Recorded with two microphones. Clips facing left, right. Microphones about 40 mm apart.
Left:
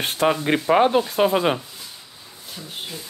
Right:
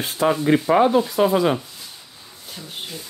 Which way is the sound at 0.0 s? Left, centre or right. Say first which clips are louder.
Right 1 dB; left.